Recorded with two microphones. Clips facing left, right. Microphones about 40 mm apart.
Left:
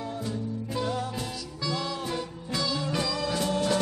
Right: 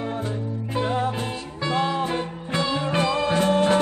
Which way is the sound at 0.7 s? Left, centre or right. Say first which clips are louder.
Right 6 dB; right.